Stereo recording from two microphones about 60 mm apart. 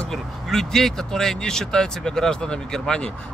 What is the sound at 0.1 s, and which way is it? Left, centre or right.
Speech, centre.